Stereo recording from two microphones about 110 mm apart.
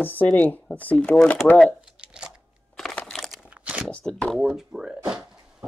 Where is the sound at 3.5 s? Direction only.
10° right (ahead or behind).